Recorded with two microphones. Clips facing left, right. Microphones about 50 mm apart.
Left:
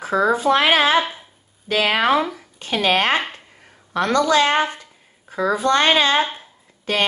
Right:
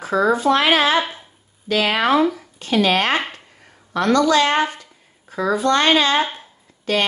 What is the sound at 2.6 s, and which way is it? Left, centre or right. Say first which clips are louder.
A woman's voice: right 1 dB; left.